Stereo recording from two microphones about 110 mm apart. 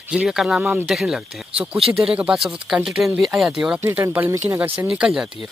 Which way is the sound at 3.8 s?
20° right (ahead or behind).